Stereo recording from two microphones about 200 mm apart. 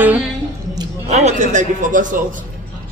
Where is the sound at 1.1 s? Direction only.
35° right (ahead or behind).